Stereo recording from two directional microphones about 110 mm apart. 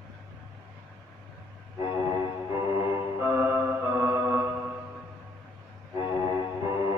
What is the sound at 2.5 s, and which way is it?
Music, 25° right (ahead or behind).